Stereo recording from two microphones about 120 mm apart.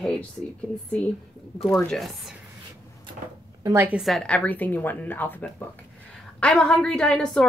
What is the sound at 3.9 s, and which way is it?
A woman's voice, centre (ahead or behind).